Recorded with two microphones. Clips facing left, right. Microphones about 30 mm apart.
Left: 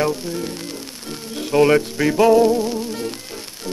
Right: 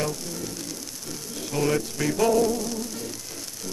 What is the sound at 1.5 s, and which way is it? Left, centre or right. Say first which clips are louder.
Music: left 10 dB; left.